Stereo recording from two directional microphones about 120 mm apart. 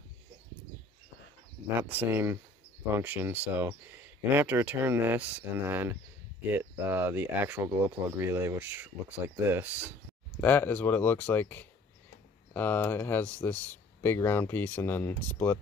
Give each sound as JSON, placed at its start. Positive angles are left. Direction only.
{"t": 1.8, "sound": "speech", "side_deg": -15}
{"t": 10.4, "sound": "speech", "side_deg": 15}